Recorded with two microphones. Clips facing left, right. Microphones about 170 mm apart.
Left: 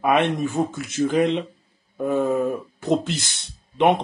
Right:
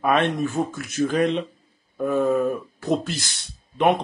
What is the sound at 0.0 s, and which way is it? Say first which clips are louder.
Speech: left 1 dB; 20° left (ahead or behind).